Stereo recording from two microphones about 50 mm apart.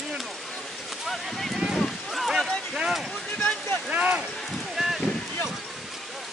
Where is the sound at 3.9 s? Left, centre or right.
Right.